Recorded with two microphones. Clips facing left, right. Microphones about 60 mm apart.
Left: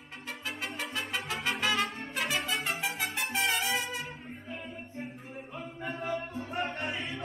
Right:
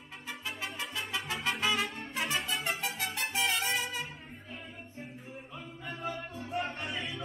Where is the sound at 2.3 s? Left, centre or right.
Left.